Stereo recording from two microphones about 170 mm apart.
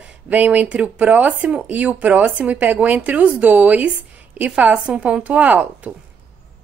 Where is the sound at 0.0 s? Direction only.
10° right (ahead or behind).